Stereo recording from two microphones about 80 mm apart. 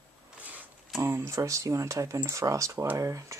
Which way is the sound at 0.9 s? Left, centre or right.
Right.